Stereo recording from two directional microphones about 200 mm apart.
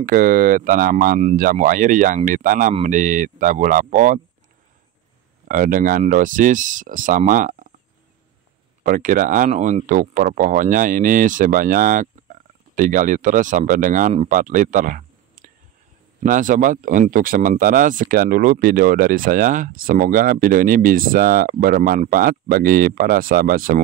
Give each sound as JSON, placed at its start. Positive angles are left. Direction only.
{"t": 0.0, "sound": "speech", "side_deg": -45}
{"t": 5.5, "sound": "speech", "side_deg": -45}
{"t": 8.8, "sound": "speech", "side_deg": -40}